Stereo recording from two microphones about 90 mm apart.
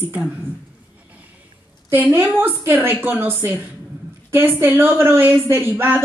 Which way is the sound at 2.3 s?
25° right (ahead or behind).